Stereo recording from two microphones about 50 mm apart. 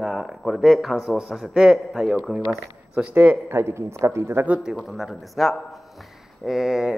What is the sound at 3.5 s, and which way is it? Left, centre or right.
Speech, right.